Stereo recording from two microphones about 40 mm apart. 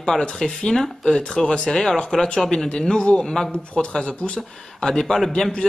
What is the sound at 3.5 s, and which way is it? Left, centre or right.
Speech, left.